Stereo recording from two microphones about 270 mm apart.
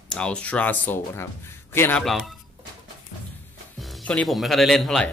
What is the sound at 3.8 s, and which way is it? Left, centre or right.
Speech, centre.